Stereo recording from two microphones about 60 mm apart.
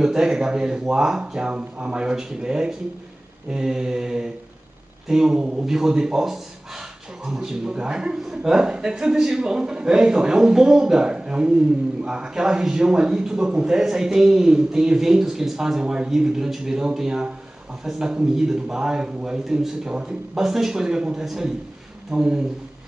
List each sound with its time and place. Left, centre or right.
0.0 s a man's voice: centre